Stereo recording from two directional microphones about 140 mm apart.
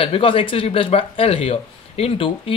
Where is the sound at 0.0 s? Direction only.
40° left (ahead or behind).